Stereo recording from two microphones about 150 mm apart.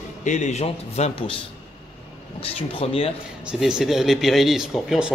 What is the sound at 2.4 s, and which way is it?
Speech, 40° left (ahead or behind).